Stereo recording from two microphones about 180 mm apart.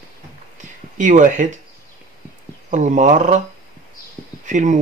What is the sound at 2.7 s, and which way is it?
Speech, 40° right (ahead or behind).